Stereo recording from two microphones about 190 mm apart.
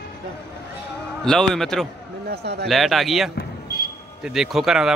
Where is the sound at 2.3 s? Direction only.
60° right (ahead or behind).